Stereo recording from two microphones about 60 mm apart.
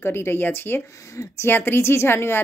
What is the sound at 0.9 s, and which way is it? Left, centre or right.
Speech, left.